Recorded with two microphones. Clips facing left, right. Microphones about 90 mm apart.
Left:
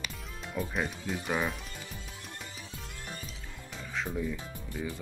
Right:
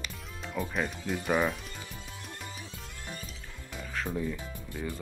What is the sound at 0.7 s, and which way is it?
Speech, centre (ahead or behind).